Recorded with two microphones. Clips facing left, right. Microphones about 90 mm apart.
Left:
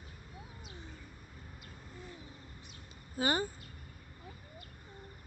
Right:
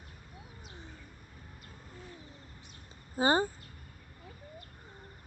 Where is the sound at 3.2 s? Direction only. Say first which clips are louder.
Right 5 dB; 30° right (ahead or behind).